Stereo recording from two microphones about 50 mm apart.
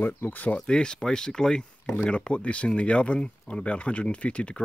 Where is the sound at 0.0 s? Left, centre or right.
Left.